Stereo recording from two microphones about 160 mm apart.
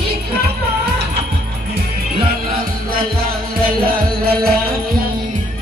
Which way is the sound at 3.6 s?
65° right (ahead or behind).